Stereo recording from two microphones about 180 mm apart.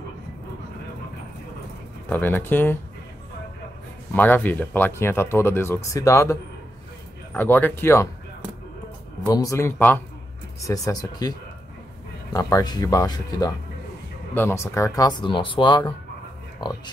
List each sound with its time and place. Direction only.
2.0 s speech: 10° left (ahead or behind)
4.1 s speech: 10° left (ahead or behind)
7.3 s speech: 10° left (ahead or behind)